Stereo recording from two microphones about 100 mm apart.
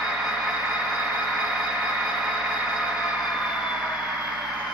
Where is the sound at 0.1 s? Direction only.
10° right (ahead or behind).